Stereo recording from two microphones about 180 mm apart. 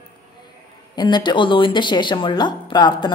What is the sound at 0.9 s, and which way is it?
A woman's voice, 25° left (ahead or behind).